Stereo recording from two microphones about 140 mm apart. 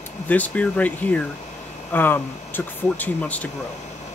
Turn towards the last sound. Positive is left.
turn(degrees=10)  # may be behind; listen again after turning